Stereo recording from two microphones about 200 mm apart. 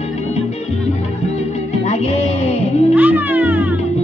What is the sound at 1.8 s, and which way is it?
Music, 30° left (ahead or behind).